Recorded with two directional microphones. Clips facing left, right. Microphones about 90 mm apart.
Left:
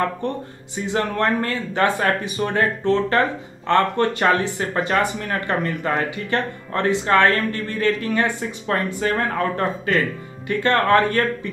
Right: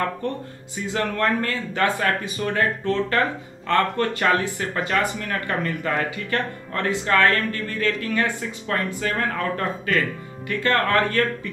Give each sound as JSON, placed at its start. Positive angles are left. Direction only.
{"t": 0.2, "sound": "speech", "side_deg": 20}